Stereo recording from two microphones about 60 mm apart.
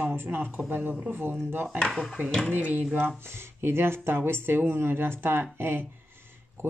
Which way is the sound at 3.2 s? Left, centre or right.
Right.